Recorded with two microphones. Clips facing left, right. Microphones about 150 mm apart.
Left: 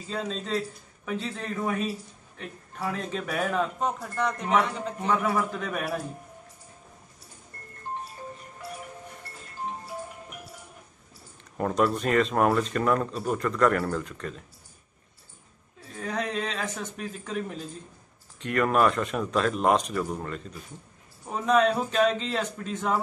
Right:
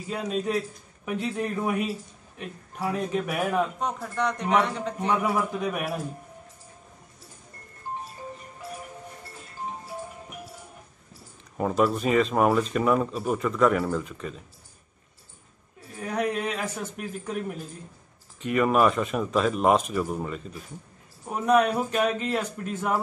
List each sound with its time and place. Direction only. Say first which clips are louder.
0.1 s a man's voice: right 3 dB; 10° right (ahead or behind)
3.8 s speech: even; centre (ahead or behind)
5.1 s a man's voice: even; 15° right (ahead or behind)
11.5 s speech: right 1 dB; 5° right (ahead or behind)
16.0 s a man's voice: right 3 dB; 10° right (ahead or behind)